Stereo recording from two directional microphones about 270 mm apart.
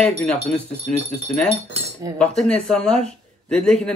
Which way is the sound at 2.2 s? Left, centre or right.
Centre.